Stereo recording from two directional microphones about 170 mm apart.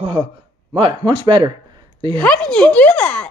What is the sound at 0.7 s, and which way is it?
Speech, 30° right (ahead or behind).